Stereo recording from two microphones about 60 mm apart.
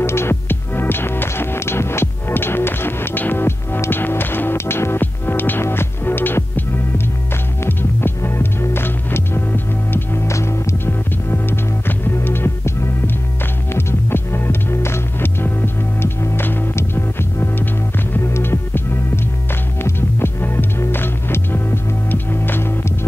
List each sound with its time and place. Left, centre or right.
0.0 s music: left
10.2 s music: left
10.9 s music: left